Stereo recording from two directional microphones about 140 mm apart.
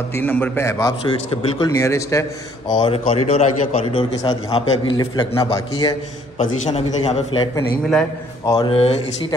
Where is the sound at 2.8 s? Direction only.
40° left (ahead or behind).